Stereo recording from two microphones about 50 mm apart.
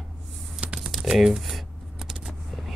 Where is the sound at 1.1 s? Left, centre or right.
Centre.